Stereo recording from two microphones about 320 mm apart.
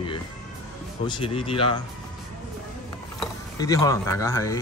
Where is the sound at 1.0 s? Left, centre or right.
Centre.